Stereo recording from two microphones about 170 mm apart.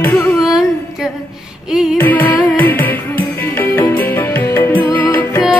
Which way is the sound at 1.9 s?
10° left (ahead or behind).